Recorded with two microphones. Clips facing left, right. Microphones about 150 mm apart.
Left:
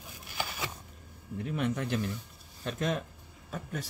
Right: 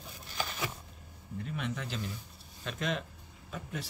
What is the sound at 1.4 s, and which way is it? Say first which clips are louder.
Speech: left 6 dB; 55° left (ahead or behind).